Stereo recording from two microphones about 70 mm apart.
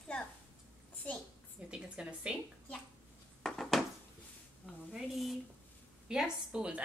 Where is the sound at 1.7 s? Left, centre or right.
Centre.